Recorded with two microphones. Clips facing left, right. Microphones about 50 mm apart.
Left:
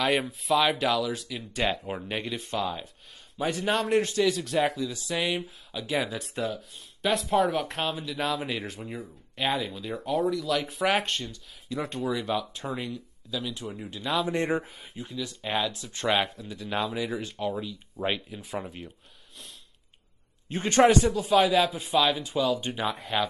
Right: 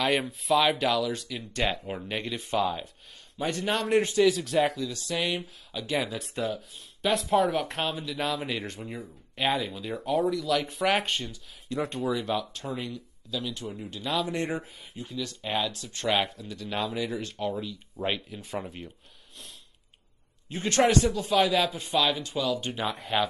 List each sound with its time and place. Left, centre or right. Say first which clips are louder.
0.0 s a man's voice: left 1 dB; centre
14.1 s speech: left 3 dB; left
15.0 s a man's voice: even; centre
16.3 s a man's voice: left 1 dB; centre
20.4 s a man's voice: left 1 dB; left
20.8 s a man's voice: left 3 dB; centre